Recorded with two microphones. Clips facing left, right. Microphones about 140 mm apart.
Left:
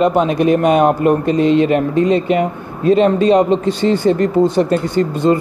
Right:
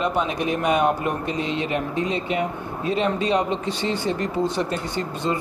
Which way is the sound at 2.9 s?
45° left (ahead or behind).